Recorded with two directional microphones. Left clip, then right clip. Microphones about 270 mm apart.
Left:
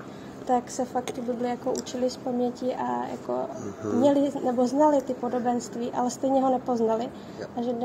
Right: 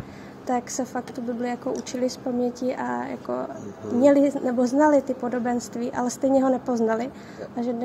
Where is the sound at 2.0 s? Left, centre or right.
Right.